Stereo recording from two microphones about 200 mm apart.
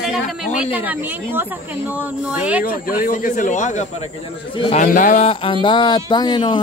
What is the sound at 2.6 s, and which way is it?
Speech, 45° left (ahead or behind).